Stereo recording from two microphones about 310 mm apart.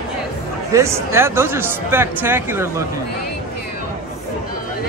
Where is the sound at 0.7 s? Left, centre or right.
Centre.